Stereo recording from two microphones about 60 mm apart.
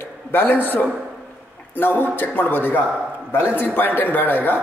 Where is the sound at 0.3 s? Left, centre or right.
Left.